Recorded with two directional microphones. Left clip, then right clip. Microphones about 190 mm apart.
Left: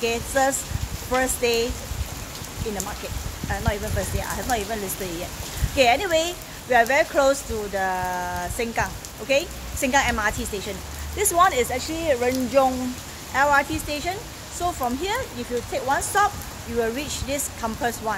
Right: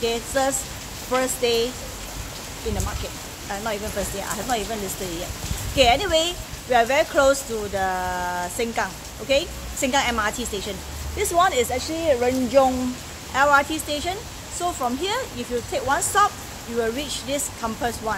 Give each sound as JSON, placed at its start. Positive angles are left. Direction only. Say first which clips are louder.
{"t": 0.0, "sound": "speech", "louder": "left 1 dB", "side_deg": 5}
{"t": 5.8, "sound": "speech", "louder": "right 1 dB", "side_deg": 5}